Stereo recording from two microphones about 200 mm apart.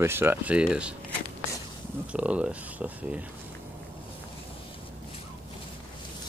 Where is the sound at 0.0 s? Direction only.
10° right (ahead or behind).